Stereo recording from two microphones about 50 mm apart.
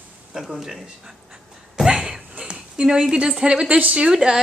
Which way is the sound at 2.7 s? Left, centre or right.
Centre.